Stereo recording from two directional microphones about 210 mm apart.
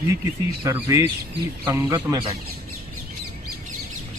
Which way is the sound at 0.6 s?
15° right (ahead or behind).